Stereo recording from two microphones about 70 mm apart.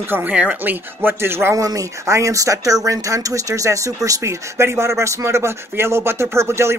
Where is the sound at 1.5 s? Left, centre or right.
Right.